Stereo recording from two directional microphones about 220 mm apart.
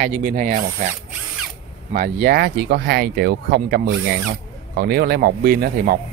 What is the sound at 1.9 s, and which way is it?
Speech, 40° right (ahead or behind).